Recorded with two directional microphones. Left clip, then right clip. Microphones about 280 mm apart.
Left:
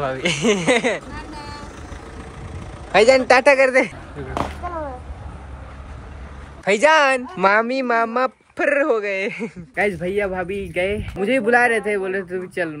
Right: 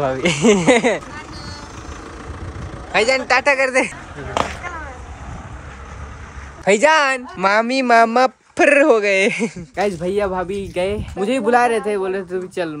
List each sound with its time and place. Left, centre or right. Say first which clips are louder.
0.0 s speech: right 4 dB; centre
2.9 s a man's voice: left 3 dB; centre
6.6 s speech: right 1 dB; centre